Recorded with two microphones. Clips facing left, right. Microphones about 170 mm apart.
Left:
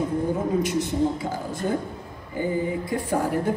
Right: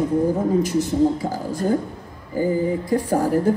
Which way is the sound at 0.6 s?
40° right (ahead or behind).